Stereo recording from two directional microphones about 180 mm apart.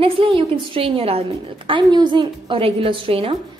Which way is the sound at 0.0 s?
30° right (ahead or behind).